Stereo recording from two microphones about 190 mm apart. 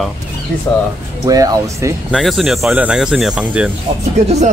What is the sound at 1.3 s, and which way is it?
Speech, 20° right (ahead or behind).